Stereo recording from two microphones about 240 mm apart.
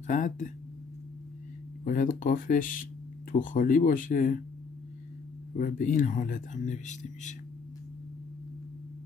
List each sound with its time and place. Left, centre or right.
0.0 s speech: left
1.9 s speech: left
5.6 s speech: left